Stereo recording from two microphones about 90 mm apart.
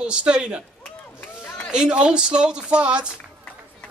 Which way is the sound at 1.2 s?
20° left (ahead or behind).